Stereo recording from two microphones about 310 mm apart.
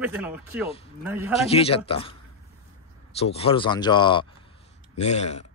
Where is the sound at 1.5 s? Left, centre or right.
Centre.